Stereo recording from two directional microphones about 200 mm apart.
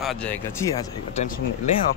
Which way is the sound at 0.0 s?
5° left (ahead or behind).